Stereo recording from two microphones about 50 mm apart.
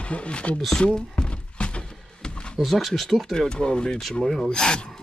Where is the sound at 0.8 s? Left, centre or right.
Centre.